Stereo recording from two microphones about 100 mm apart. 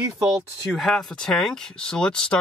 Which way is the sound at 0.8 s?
5° left (ahead or behind).